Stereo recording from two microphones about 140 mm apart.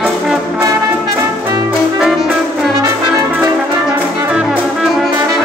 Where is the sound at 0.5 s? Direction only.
25° right (ahead or behind).